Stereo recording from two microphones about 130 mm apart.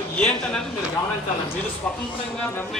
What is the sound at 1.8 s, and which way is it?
Speech, 5° left (ahead or behind).